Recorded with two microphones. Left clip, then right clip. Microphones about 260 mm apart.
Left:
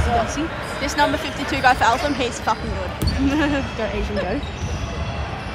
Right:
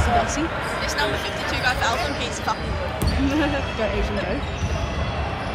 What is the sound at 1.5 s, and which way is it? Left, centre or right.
Speech, left.